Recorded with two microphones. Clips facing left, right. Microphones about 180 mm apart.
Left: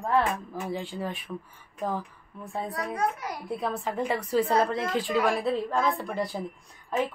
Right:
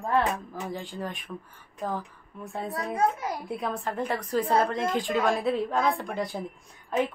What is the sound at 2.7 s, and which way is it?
Speech, 25° right (ahead or behind).